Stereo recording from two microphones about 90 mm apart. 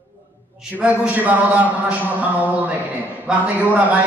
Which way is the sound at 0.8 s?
15° right (ahead or behind).